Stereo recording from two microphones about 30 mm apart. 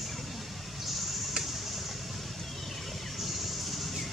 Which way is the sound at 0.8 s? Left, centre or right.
Centre.